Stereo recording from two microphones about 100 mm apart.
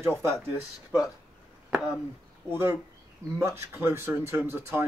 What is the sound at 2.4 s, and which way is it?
Speech, 25° right (ahead or behind).